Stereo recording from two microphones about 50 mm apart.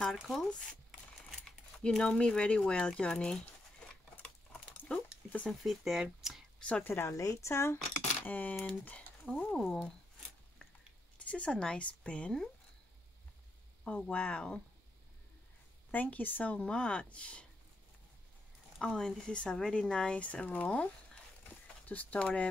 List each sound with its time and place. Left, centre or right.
0.0 s speech: centre
1.8 s speech: centre
5.5 s speech: centre
6.9 s speech: left
8.3 s a woman's voice: left
9.3 s speech: centre
11.1 s a sound: left
11.5 s speech: centre
14.1 s speech: left
15.9 s a woman's voice: left
16.5 s speech: left
18.8 s speech: centre